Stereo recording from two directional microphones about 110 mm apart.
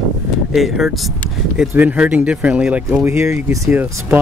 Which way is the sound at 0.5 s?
Centre (ahead or behind).